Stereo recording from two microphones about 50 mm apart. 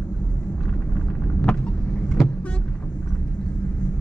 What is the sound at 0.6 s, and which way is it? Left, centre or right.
Vehicle, left.